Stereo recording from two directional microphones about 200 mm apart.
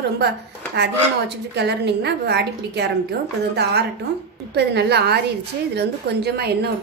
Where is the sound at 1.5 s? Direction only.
55° right (ahead or behind).